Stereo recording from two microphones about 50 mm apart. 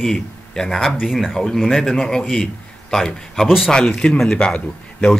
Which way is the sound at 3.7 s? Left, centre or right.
Centre.